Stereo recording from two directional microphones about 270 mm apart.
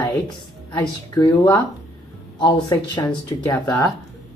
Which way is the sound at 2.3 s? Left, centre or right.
Centre.